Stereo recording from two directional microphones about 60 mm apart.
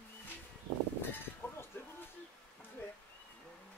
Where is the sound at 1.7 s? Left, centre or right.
Left.